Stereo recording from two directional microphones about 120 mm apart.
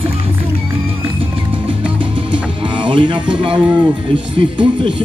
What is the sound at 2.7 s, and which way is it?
Music, 45° right (ahead or behind).